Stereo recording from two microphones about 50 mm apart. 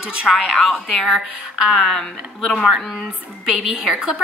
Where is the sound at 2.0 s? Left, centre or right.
Centre.